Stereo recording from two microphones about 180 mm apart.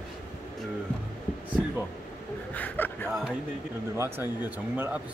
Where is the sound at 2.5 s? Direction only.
10° left (ahead or behind).